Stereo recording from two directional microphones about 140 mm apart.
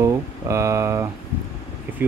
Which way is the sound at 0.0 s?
20° right (ahead or behind).